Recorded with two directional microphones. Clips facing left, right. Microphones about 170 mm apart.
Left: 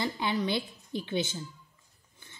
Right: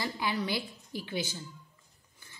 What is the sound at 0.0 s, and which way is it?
A woman's voice, 20° left (ahead or behind).